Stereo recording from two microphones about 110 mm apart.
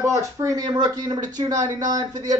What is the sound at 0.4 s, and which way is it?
Speech, 35° right (ahead or behind).